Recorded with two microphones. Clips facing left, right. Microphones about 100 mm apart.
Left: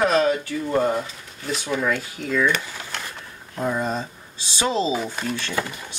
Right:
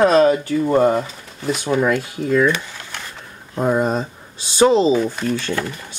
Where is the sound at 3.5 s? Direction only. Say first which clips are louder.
Right 6 dB; 30° right (ahead or behind).